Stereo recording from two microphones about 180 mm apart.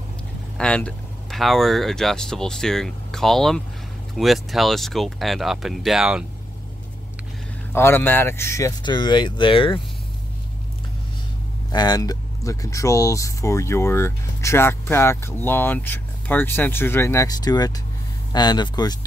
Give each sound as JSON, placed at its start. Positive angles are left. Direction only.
{"t": 0.6, "sound": "speech", "side_deg": 5}
{"t": 7.7, "sound": "speech", "side_deg": 15}
{"t": 11.7, "sound": "speech", "side_deg": 20}